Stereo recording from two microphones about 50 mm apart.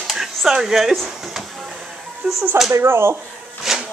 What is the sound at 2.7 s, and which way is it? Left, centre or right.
Speech, right.